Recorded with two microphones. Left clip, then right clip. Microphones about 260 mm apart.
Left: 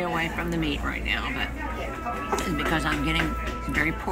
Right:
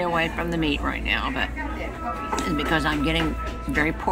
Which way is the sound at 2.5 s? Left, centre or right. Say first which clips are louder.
Right 5 dB; centre.